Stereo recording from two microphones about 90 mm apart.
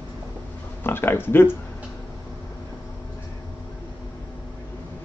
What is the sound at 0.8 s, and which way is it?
Speech, 25° left (ahead or behind).